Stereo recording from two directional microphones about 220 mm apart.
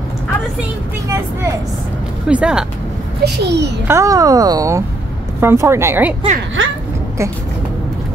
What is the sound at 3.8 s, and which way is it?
Speech, 15° right (ahead or behind).